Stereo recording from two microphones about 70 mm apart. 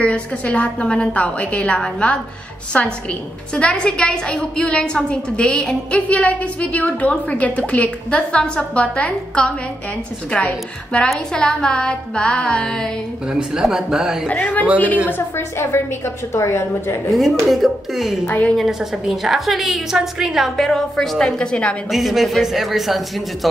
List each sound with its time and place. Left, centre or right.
0.0 s a woman's voice: centre
13.3 s speech: centre
14.3 s a man's voice: left
17.1 s a woman's voice: centre
18.2 s a man's voice: left
18.6 s a woman's voice: centre
21.9 s a woman's voice: centre